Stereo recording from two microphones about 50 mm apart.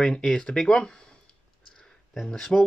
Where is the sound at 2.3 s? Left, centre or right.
Centre.